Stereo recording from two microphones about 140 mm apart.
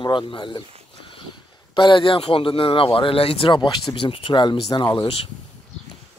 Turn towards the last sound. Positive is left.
turn(degrees=40)  # may be behind; listen again after turning